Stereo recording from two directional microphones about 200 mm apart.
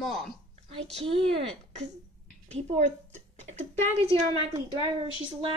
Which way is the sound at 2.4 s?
35° right (ahead or behind).